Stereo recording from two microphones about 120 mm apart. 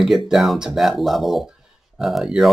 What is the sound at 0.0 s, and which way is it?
Speech, centre (ahead or behind).